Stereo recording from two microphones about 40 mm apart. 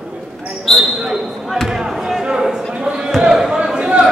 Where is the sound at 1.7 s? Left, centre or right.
Centre.